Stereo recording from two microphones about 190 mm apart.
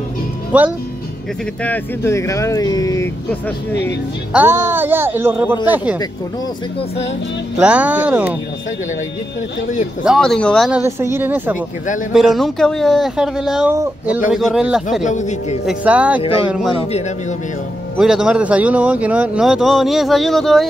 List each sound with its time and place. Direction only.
0.5 s speech: 10° right (ahead or behind)
1.6 s speech: 10° left (ahead or behind)
4.3 s speech: 10° right (ahead or behind)
7.6 s speech: 5° right (ahead or behind)
10.0 s speech: centre (ahead or behind)
10.7 s speech: 15° right (ahead or behind)
15.0 s a man's voice: 40° left (ahead or behind)
15.6 s speech: 5° right (ahead or behind)
16.2 s speech: 30° left (ahead or behind)
16.4 s speech: 5° right (ahead or behind)
17.9 s speech: 5° right (ahead or behind)